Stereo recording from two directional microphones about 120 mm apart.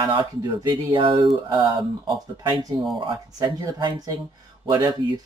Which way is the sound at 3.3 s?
35° right (ahead or behind).